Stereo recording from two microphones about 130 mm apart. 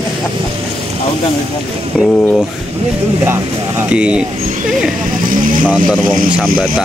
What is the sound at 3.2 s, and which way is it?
Speech, 20° right (ahead or behind).